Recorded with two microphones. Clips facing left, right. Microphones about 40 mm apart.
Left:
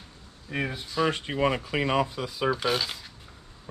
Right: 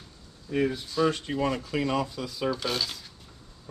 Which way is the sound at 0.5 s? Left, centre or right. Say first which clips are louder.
Right 4 dB; left.